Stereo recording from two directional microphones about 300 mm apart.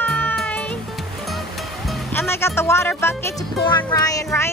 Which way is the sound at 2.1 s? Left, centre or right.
Centre.